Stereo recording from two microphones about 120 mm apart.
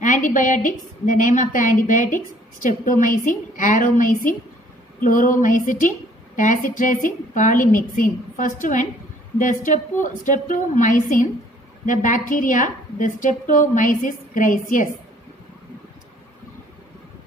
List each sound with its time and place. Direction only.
0.0 s a woman's voice: 90° left